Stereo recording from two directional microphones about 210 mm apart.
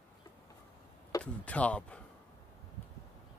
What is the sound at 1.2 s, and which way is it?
Speech, 5° left (ahead or behind).